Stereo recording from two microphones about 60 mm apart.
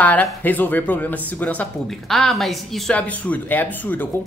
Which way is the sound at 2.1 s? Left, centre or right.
Centre.